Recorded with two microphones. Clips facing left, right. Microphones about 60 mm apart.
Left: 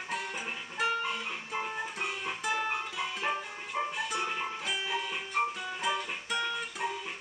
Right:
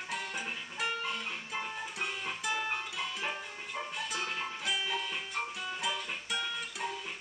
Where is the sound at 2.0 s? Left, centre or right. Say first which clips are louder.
Even; centre.